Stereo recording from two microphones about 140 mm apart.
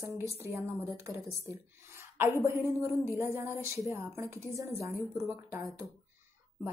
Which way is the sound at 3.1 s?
15° right (ahead or behind).